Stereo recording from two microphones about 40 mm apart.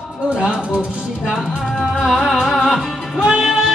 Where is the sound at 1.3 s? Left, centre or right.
Centre.